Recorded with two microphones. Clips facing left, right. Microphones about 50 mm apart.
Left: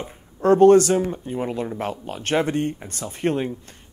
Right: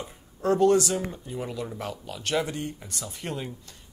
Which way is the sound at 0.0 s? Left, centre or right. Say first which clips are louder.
Left 7 dB; left.